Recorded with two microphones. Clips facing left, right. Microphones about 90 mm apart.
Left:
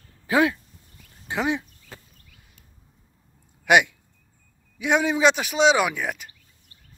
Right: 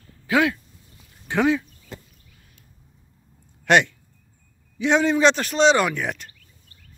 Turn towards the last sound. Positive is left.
turn(degrees=5)  # may be behind; listen again after turning